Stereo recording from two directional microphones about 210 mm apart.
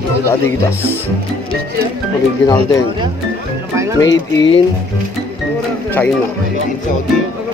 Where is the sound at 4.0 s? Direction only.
20° left (ahead or behind).